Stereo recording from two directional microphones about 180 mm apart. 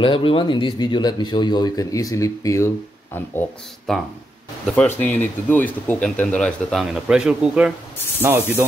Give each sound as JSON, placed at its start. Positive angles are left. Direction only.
{"t": 0.0, "sound": "speech", "side_deg": 30}
{"t": 4.9, "sound": "speech", "side_deg": 10}